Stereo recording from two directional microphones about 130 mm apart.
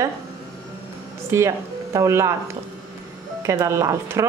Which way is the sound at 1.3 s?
20° right (ahead or behind).